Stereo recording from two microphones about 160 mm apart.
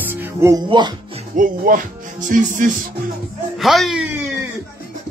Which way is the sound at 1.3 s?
60° right (ahead or behind).